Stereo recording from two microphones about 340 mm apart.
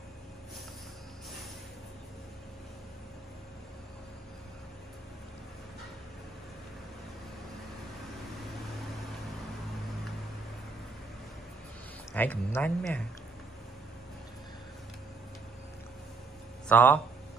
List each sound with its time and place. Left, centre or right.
12.1 s speech: centre
16.6 s speech: centre